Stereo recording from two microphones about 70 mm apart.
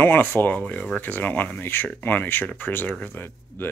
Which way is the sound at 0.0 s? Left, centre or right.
Left.